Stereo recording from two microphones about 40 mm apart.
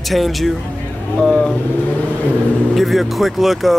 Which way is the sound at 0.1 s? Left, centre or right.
Centre.